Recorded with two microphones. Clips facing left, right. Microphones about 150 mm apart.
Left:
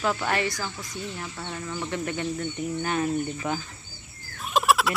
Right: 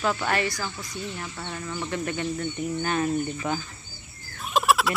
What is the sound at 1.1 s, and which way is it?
Speech, 5° left (ahead or behind).